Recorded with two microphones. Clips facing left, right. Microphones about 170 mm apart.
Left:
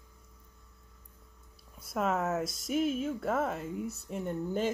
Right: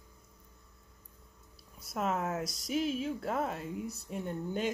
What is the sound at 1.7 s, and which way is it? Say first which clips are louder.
Speech: left 3 dB; centre (ahead or behind).